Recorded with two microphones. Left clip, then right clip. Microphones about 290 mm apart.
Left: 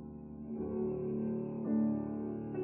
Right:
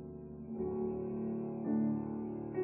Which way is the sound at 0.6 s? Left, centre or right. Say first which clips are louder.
Even; centre.